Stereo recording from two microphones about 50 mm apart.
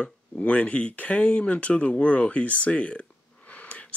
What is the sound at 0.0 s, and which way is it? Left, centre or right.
Speech, left.